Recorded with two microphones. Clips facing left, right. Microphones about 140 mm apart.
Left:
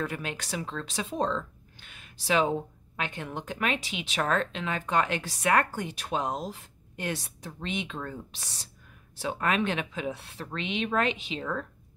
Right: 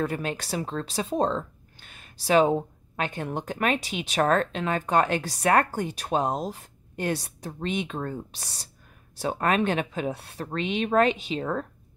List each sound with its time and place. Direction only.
0.0 s speech: 40° right (ahead or behind)